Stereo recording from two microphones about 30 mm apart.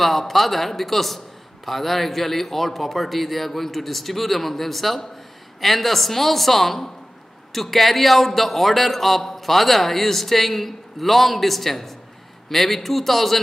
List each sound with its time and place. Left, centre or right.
0.0 s a man's voice: centre